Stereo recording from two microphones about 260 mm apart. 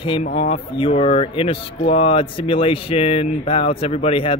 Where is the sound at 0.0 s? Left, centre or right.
Centre.